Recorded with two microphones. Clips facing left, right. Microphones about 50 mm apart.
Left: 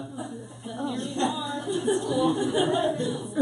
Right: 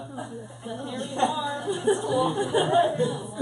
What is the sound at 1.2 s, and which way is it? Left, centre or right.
A man's voice, centre.